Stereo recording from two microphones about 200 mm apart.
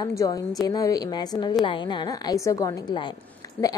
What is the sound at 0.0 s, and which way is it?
A woman's voice, 15° left (ahead or behind).